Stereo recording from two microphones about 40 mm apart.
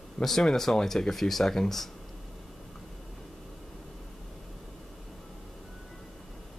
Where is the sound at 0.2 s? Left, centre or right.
Centre.